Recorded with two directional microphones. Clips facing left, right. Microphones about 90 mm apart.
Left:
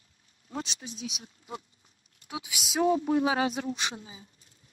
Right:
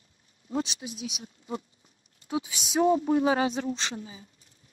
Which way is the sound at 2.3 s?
30° right (ahead or behind).